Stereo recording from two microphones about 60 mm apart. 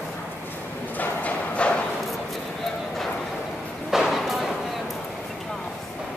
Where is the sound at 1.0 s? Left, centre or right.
Left.